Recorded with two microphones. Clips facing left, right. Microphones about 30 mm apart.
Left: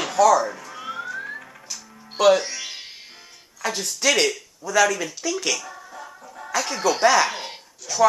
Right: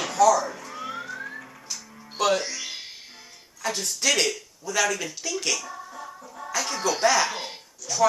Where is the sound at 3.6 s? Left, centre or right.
Left.